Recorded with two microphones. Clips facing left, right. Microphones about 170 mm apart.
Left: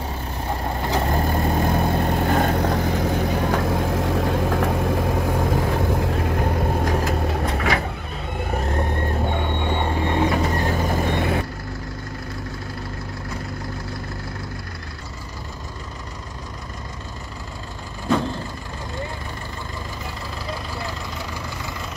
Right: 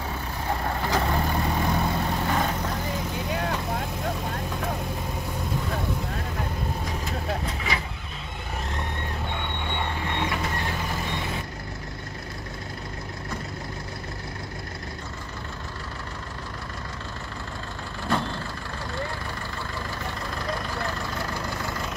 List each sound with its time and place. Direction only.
0.9 s vehicle: 40° left (ahead or behind); by 11.4 s 55° left (ahead or behind)